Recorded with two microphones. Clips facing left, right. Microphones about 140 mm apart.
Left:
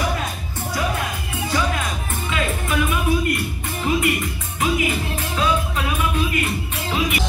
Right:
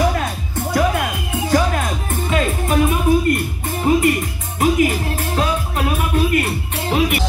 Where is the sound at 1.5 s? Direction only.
50° right (ahead or behind).